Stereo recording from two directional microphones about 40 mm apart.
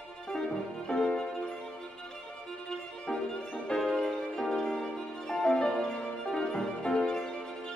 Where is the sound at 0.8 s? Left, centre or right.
Centre.